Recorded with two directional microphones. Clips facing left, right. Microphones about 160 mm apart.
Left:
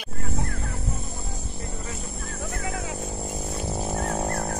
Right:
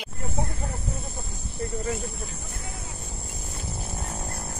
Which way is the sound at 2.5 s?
90° left.